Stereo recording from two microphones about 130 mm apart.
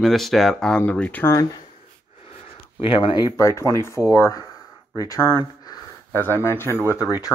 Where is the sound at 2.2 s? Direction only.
50° left (ahead or behind); by 4.4 s 25° left (ahead or behind).